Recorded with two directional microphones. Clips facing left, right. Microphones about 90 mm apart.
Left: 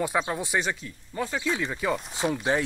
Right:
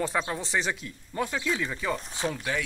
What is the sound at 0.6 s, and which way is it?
Speech, 5° right (ahead or behind).